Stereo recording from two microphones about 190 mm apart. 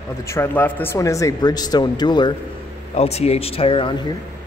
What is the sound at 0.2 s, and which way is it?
Speech, 15° left (ahead or behind).